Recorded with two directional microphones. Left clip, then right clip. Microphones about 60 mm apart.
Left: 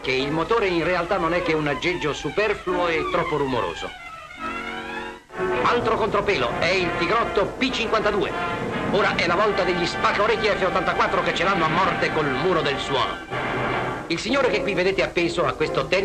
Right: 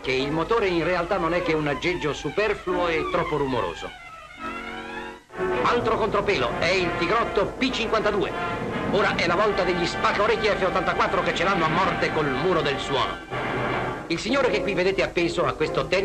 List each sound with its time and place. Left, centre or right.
0.1 s speech: left
5.4 s speech: left